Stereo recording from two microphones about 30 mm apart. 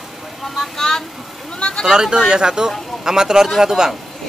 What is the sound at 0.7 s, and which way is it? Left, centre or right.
Vehicle, centre.